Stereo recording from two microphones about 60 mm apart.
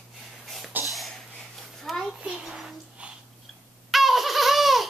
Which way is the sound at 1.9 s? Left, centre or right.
Centre.